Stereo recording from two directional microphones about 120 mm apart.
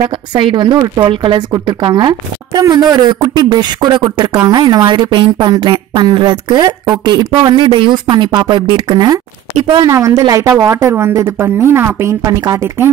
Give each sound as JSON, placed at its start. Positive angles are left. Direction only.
{"t": 0.3, "sound": "a woman's voice", "side_deg": -40}
{"t": 9.6, "sound": "a woman's voice", "side_deg": -50}
{"t": 9.8, "sound": "a woman's voice", "side_deg": -25}